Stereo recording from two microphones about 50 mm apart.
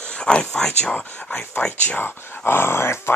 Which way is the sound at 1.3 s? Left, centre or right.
Left.